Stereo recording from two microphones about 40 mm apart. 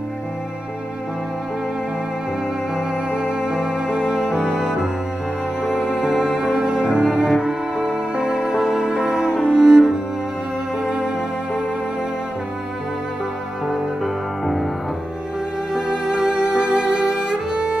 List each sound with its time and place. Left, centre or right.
3.1 s music: centre
14.0 s music: centre
15.7 s music: centre